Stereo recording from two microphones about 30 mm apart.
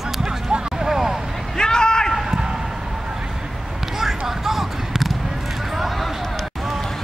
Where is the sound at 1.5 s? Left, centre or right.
Left.